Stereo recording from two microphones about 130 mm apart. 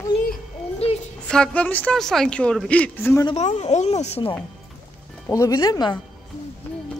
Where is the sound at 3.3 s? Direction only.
65° left (ahead or behind).